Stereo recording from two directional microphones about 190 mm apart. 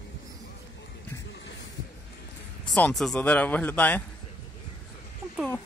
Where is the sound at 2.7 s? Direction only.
5° left (ahead or behind).